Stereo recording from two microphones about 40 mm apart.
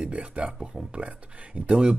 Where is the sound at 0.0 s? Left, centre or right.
Right.